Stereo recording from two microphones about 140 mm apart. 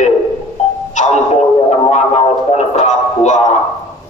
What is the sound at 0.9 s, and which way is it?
Music, 60° left (ahead or behind).